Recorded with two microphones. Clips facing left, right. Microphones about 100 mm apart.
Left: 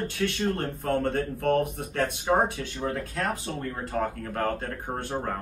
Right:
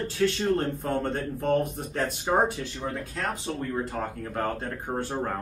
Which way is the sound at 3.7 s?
20° right (ahead or behind).